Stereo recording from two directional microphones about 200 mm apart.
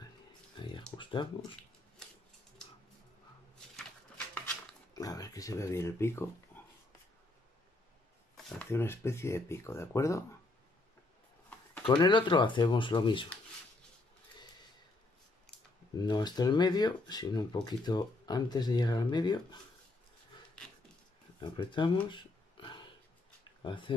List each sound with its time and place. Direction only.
0.6 s a sound: 25° left (ahead or behind)
0.9 s speech: 25° left (ahead or behind)
4.9 s speech: 20° left (ahead or behind)
8.5 s speech: 10° left (ahead or behind)
11.8 s speech: 25° left (ahead or behind)
16.1 s speech: 20° left (ahead or behind)
21.4 s speech: 25° left (ahead or behind)
22.1 s a sound: 25° left (ahead or behind)